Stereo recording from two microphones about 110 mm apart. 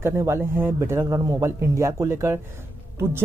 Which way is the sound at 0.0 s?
25° right (ahead or behind).